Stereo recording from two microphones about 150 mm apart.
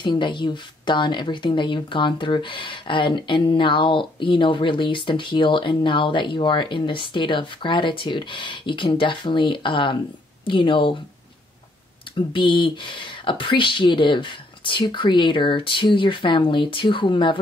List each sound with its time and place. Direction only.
0.0 s speech: 30° left (ahead or behind)
12.3 s speech: 35° left (ahead or behind)